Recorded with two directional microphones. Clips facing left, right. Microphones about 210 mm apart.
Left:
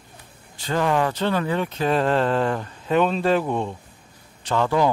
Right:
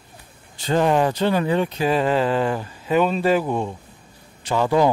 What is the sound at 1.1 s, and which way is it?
Speech, 15° right (ahead or behind).